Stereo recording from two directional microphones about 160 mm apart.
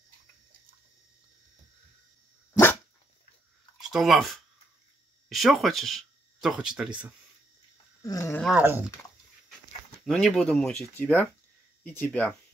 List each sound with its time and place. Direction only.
2.5 s dog: 15° left (ahead or behind)
3.9 s speech: centre (ahead or behind)
5.3 s speech: centre (ahead or behind)
8.0 s speech: 20° left (ahead or behind)
8.4 s speech: centre (ahead or behind)
8.6 s speech: 15° right (ahead or behind)
10.0 s speech: centre (ahead or behind)